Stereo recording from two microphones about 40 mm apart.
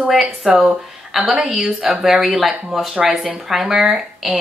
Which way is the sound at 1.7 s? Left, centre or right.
Right.